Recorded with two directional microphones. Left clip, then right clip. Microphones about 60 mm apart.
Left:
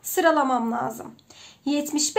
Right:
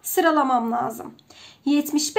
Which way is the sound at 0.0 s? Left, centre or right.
Centre.